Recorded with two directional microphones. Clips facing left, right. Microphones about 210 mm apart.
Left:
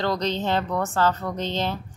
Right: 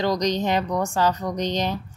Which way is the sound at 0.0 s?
15° right (ahead or behind).